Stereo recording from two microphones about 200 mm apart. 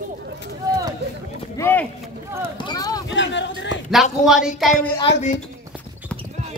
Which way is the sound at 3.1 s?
65° left (ahead or behind).